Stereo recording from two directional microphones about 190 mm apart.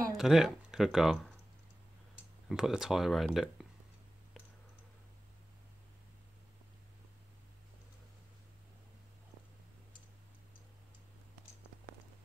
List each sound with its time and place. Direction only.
0.2 s speech: centre (ahead or behind)
2.5 s speech: centre (ahead or behind)